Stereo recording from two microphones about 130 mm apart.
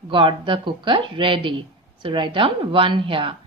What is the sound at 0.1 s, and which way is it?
A woman's voice, 40° right (ahead or behind).